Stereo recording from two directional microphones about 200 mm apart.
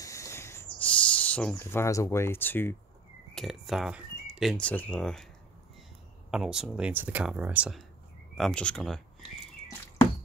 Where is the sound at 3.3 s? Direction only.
Centre (ahead or behind).